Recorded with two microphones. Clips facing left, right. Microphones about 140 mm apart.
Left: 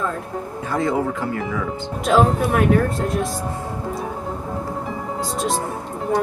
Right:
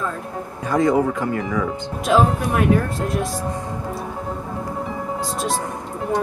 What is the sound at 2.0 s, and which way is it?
Speech, centre (ahead or behind).